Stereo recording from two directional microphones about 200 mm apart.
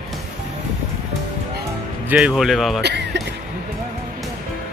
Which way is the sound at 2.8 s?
60° right (ahead or behind).